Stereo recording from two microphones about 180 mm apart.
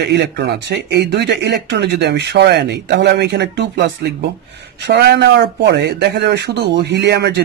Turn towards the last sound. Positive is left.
turn(degrees=-70)  # may be behind; listen again after turning